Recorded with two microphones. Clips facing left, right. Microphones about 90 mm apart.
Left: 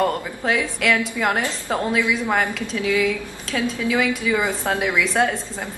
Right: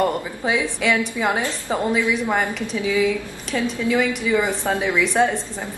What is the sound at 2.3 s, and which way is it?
Speech, 15° right (ahead or behind).